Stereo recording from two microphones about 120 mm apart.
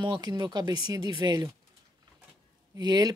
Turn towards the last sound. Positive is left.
turn(degrees=-35)  # may be behind; listen again after turning